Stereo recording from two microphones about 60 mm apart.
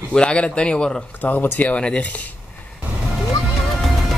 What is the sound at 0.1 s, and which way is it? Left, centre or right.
Speech, centre.